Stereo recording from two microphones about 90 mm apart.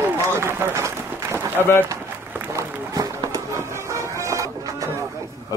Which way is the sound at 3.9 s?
35° right (ahead or behind).